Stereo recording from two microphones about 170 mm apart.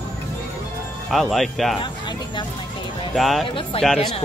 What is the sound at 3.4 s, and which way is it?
Speech, 30° left (ahead or behind).